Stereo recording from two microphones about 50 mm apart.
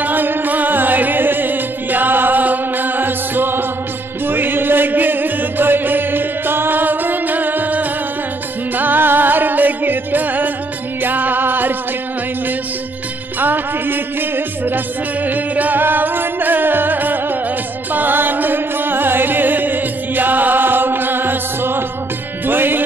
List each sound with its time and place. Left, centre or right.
0.0 s music: right
13.4 s music: right